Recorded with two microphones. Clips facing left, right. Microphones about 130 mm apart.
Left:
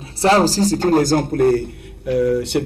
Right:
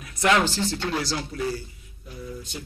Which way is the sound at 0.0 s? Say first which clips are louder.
Left 7 dB; 30° left (ahead or behind).